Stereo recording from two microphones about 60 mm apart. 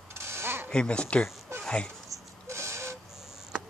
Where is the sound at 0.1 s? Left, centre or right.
Right.